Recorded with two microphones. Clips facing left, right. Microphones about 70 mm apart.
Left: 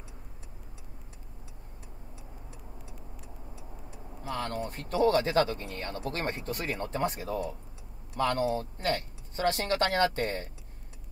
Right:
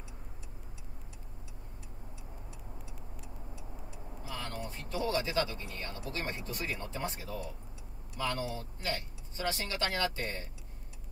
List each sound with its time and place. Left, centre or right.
4.2 s speech: left